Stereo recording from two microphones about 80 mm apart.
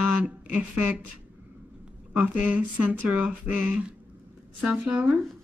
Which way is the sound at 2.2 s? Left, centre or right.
Right.